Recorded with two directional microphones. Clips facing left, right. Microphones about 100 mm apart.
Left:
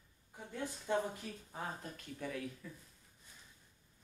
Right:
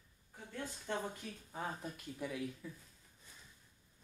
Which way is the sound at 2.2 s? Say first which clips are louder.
Right 1 dB; 10° right (ahead or behind).